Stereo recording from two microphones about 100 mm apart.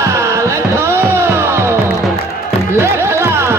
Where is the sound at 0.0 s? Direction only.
30° right (ahead or behind).